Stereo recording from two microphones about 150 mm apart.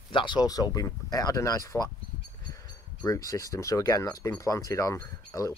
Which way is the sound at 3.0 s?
25° left (ahead or behind).